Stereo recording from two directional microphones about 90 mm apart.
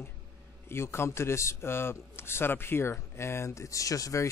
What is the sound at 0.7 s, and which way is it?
A man's voice, 30° left (ahead or behind).